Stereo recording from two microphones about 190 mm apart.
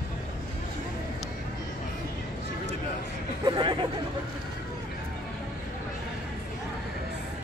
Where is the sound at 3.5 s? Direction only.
25° right (ahead or behind).